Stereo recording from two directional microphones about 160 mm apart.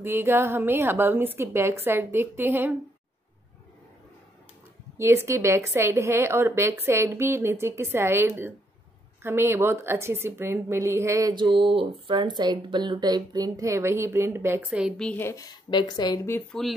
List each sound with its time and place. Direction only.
0.0 s a woman's voice: 15° right (ahead or behind)
4.9 s a woman's voice: 15° right (ahead or behind)
15.0 s speech: 15° left (ahead or behind)
16.5 s speech: 5° left (ahead or behind)